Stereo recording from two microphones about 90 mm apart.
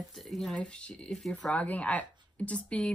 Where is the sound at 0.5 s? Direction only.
10° left (ahead or behind).